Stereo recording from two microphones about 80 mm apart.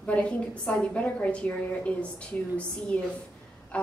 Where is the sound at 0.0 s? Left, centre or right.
Centre.